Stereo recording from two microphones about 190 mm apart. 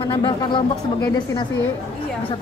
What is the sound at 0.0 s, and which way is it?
Speech, 25° left (ahead or behind).